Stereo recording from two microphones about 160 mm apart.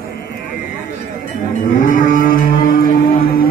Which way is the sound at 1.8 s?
55° left (ahead or behind).